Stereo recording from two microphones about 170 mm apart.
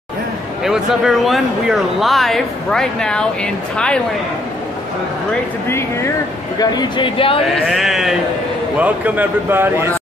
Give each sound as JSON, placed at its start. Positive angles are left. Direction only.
{"t": 0.7, "sound": "speech", "side_deg": 0}
{"t": 6.6, "sound": "speech", "side_deg": 25}
{"t": 7.6, "sound": "a man's voice", "side_deg": 0}